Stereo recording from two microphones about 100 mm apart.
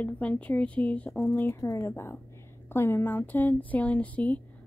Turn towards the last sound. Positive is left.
turn(degrees=15)  # may be behind; listen again after turning